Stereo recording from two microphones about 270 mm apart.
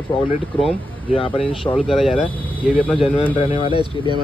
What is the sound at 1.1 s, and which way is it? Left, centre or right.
Speech, centre.